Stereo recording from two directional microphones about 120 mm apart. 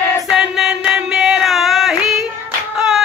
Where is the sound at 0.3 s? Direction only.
5° right (ahead or behind).